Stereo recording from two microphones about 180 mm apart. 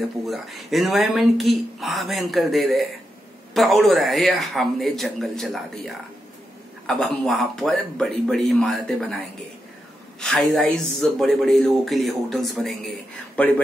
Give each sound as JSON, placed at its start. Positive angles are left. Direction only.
{"t": 0.3, "sound": "speech", "side_deg": 0}
{"t": 10.2, "sound": "a man's voice", "side_deg": 5}